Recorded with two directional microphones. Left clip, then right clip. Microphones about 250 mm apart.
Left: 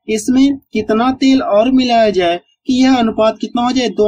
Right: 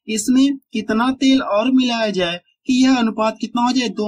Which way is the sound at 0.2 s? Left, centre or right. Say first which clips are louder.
Left 2 dB; centre.